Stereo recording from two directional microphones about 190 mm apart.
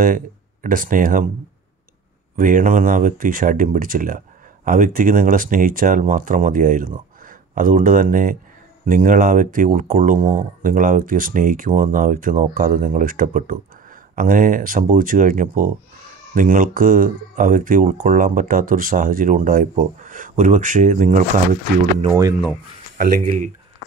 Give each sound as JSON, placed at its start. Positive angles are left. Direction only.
{"t": 0.0, "sound": "speech", "side_deg": -45}
{"t": 2.3, "sound": "speech", "side_deg": -45}
{"t": 22.9, "sound": "speech", "side_deg": -45}